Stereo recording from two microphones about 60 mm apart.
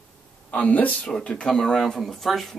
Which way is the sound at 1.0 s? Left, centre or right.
Centre.